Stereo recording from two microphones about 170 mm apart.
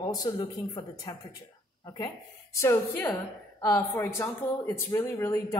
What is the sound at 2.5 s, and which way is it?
Speech, 10° left (ahead or behind).